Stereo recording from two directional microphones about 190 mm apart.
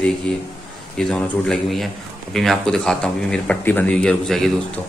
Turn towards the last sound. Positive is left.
turn(degrees=5)  # may be behind; listen again after turning